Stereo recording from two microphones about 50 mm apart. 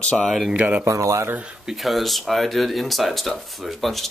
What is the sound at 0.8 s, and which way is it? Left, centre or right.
Speech, right.